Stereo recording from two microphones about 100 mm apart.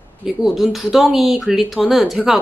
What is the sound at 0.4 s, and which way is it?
Speech, centre (ahead or behind).